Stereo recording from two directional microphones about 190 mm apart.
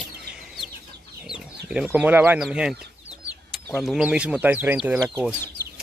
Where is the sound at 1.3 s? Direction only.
5° right (ahead or behind).